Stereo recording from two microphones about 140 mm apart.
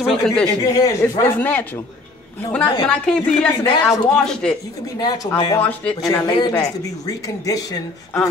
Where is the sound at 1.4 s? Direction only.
10° left (ahead or behind).